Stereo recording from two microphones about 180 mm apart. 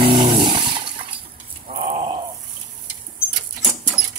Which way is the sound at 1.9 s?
30° right (ahead or behind).